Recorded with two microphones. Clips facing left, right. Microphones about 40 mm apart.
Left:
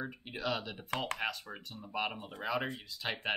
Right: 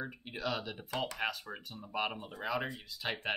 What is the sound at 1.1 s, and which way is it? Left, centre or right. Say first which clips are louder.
Speech: even; centre.